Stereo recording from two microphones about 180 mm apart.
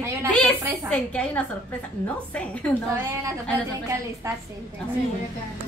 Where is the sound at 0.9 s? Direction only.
5° left (ahead or behind).